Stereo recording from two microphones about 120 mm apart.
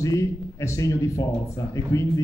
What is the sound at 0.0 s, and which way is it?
A man's voice, 25° left (ahead or behind).